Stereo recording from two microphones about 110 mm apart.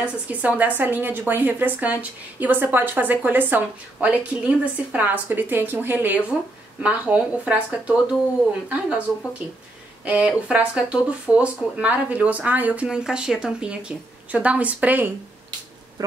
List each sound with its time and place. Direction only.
0.0 s a woman's voice: 10° right (ahead or behind)
10.0 s a woman's voice: 10° right (ahead or behind)